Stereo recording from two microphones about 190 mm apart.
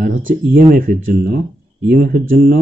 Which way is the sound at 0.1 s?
90° right.